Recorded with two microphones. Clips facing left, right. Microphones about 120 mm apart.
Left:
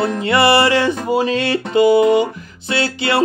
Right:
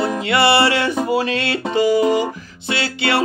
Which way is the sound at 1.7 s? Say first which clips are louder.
Left 4 dB; 35° right (ahead or behind).